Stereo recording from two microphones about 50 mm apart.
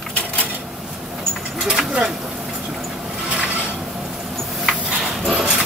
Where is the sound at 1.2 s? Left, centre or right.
Centre.